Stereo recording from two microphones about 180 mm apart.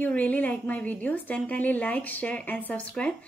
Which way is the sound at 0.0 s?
10° left (ahead or behind).